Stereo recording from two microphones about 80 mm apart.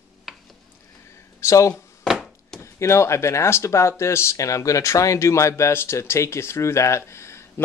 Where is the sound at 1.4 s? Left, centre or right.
Left.